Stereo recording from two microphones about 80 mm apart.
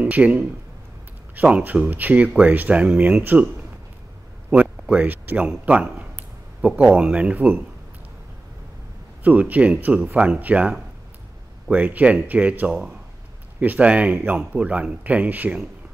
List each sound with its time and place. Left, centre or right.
0.0 s speech: centre
4.9 s speech: right
9.2 s speech: centre